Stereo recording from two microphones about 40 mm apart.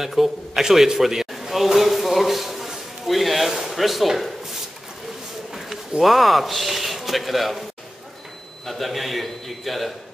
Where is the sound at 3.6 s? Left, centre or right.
Centre.